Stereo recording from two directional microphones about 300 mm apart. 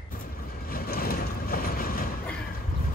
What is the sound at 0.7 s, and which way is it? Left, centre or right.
Vehicle, left.